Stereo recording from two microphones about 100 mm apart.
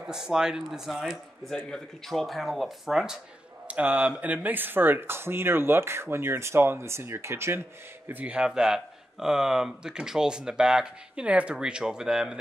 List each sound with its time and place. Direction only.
0.1 s speech: 5° right (ahead or behind); by 7.6 s 25° right (ahead or behind)
8.1 s speech: 15° right (ahead or behind)